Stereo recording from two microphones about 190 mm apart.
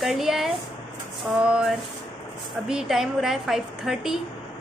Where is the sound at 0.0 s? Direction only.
Centre (ahead or behind).